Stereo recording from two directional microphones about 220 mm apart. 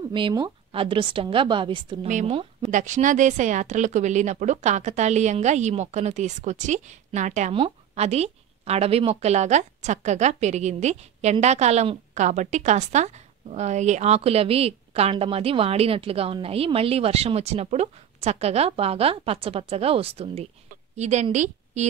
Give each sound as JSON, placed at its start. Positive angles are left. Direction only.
{"t": 0.1, "sound": "a woman's voice", "side_deg": -20}